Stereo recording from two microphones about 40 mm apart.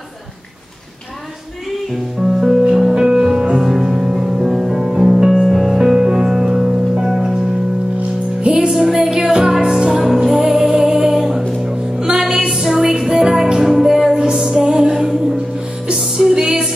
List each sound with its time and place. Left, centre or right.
2.4 s music: centre
5.8 s music: centre
8.5 s music: centre
12.4 s a sound: centre
13.1 s music: centre